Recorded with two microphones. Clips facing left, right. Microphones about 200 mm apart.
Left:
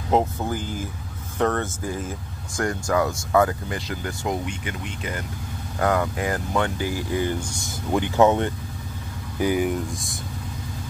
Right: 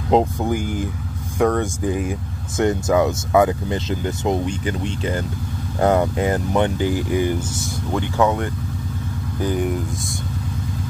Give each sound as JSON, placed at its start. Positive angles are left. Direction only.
{"t": 0.1, "sound": "speech", "side_deg": -15}
{"t": 7.9, "sound": "speech", "side_deg": 20}
{"t": 9.4, "sound": "speech", "side_deg": 10}